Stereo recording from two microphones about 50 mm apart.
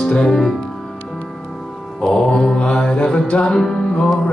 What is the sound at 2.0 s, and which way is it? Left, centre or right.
Music, centre.